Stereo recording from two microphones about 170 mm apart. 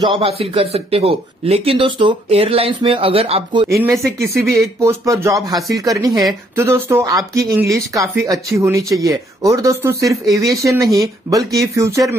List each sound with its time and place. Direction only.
0.0 s speech: 30° right (ahead or behind)
3.6 s speech: 15° right (ahead or behind)